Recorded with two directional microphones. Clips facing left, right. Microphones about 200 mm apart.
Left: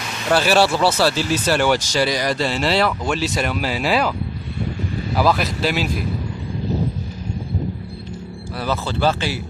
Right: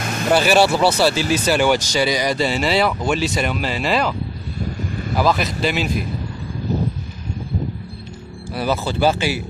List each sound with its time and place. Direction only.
0.0 s vehicle: 50° right (ahead or behind)
0.3 s speech: centre (ahead or behind)
5.1 s speech: 5° left (ahead or behind)
8.5 s speech: 10° right (ahead or behind)